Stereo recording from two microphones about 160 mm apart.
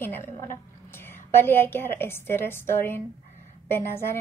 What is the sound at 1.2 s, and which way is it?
A woman's voice, 15° left (ahead or behind).